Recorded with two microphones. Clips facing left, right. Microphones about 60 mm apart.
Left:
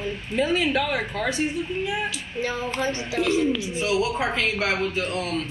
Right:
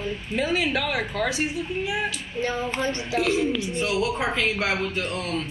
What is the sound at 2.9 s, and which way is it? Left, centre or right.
Speech, centre.